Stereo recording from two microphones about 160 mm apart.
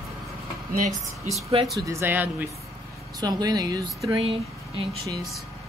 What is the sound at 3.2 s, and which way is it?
Speech, 25° right (ahead or behind).